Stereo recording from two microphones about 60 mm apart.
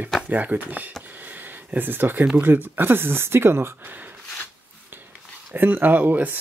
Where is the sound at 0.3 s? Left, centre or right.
Right.